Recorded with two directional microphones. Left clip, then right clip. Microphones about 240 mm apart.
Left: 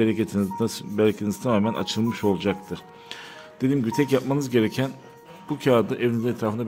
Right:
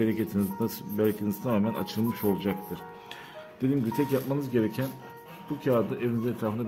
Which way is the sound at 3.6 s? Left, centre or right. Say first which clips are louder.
Left 5 dB; left.